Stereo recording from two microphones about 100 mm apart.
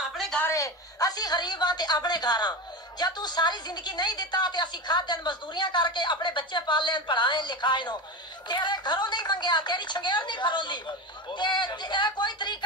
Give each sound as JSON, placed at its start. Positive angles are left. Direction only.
{"t": 0.5, "sound": "a woman's voice", "side_deg": 30}